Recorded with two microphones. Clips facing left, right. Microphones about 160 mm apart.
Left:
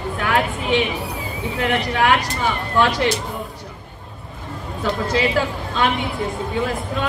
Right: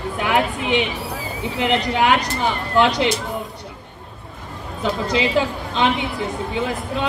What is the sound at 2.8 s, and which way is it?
Speech, 20° right (ahead or behind).